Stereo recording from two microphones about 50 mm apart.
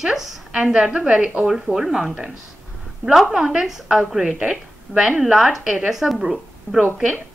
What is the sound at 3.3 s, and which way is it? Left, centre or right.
Speech, centre.